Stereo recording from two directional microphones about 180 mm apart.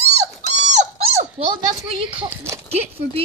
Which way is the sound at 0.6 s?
40° right (ahead or behind).